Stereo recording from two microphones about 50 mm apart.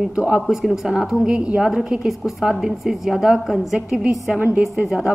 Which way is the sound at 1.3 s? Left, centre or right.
Right.